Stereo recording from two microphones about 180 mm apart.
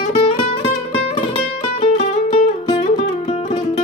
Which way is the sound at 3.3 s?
35° left (ahead or behind).